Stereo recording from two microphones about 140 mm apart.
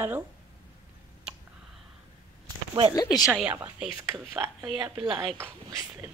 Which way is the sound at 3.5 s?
15° right (ahead or behind).